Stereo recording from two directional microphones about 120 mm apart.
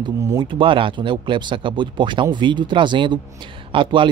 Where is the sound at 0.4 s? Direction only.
45° right (ahead or behind).